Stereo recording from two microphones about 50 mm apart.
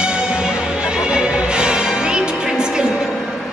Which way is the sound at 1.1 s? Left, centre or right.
Centre.